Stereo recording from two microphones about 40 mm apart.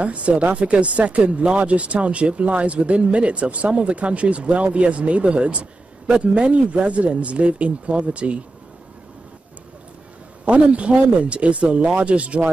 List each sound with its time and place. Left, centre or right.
0.0 s speech: right
10.4 s speech: right